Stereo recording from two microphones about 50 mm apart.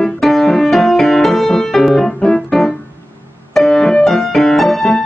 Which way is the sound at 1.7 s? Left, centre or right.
Centre.